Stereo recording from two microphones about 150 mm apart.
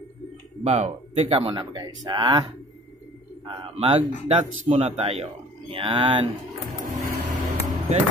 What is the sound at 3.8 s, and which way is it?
Speech, 40° right (ahead or behind).